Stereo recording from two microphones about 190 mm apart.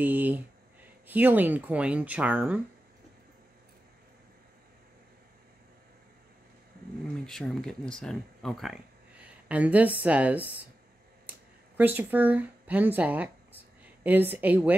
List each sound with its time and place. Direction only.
0.0 s speech: 10° right (ahead or behind)
7.2 s speech: centre (ahead or behind)
9.2 s a sound: 5° right (ahead or behind)
10.0 s speech: 5° right (ahead or behind)
11.2 s a sound: 10° right (ahead or behind)
14.0 s speech: 10° right (ahead or behind)